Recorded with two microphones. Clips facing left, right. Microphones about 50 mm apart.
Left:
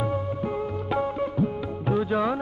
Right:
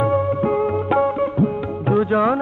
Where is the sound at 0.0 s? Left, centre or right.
Right.